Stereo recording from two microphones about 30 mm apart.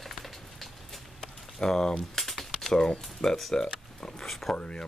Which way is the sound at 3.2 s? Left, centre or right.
Centre.